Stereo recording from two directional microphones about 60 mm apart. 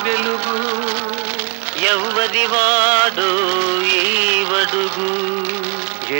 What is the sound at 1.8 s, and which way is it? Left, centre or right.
Music, right.